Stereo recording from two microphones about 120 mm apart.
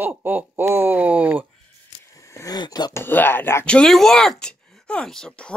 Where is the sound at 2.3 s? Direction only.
30° left (ahead or behind).